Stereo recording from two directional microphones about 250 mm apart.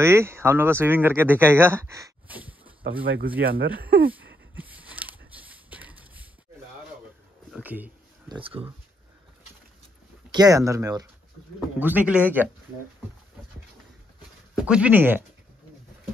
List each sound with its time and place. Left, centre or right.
0.0 s speech: centre
3.1 s speech: right
4.6 s a sound: centre
7.5 s a sound: centre
8.4 s speech: right
10.3 s speech: centre
14.6 s speech: centre